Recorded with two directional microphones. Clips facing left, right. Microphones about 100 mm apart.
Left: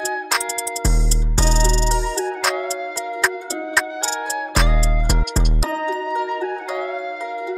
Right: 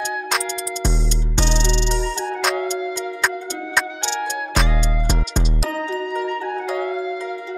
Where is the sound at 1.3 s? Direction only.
40° left (ahead or behind).